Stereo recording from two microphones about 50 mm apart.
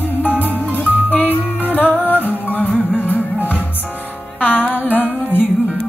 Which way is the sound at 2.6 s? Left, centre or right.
Left.